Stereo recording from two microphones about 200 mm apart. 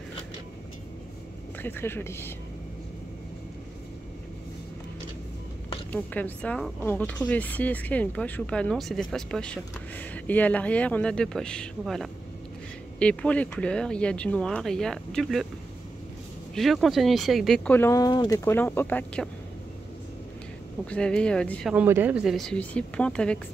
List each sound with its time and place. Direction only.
1.6 s speech: 10° left (ahead or behind)
5.9 s speech: 10° left (ahead or behind)
16.5 s speech: centre (ahead or behind)
20.8 s speech: 5° left (ahead or behind)
21.7 s speech: 10° right (ahead or behind)